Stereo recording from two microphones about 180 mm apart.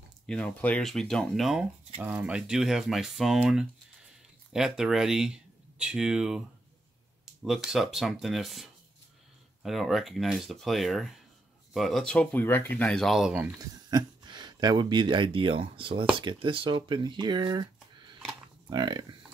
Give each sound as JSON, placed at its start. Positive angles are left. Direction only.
{"t": 0.3, "sound": "speech", "side_deg": 5}
{"t": 7.4, "sound": "speech", "side_deg": 0}
{"t": 13.8, "sound": "speech", "side_deg": -25}